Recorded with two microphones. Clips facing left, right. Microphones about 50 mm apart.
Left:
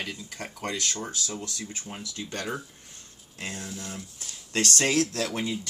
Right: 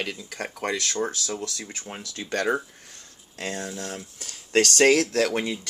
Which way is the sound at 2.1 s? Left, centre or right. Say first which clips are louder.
Right 9 dB; right.